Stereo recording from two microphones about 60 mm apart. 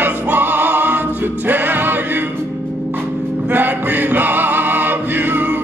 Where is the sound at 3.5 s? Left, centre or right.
Right.